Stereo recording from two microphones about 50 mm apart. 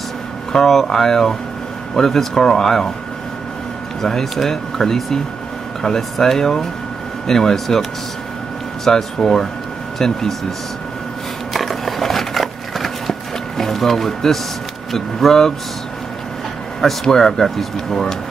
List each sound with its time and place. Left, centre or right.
0.5 s speech: centre
4.0 s speech: centre
8.8 s speech: centre
11.5 s a sound: centre
13.6 s speech: centre
16.8 s speech: centre